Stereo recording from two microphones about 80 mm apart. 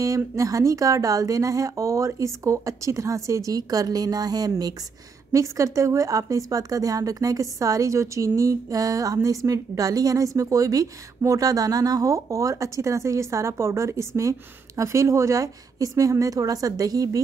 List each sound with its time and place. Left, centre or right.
0.0 s a woman's voice: right
5.3 s a woman's voice: right